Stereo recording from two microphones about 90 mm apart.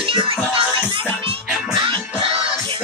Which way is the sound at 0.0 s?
80° right.